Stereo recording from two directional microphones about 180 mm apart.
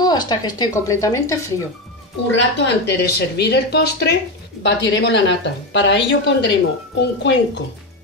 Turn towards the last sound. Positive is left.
turn(degrees=75)  # may be behind; listen again after turning